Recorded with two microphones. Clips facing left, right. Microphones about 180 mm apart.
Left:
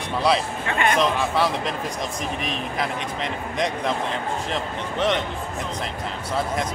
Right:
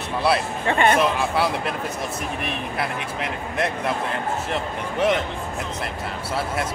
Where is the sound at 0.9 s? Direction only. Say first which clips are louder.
Even; 10° right (ahead or behind).